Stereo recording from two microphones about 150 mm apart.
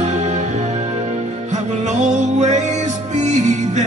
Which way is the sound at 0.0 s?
50° right (ahead or behind).